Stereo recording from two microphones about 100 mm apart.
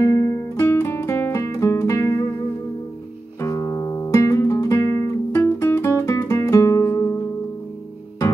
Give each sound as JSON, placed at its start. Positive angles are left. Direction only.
{"t": 0.0, "sound": "music", "side_deg": 30}
{"t": 3.3, "sound": "music", "side_deg": 30}